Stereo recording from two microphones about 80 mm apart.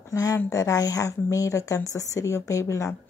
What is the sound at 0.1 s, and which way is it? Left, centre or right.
A woman's voice, left.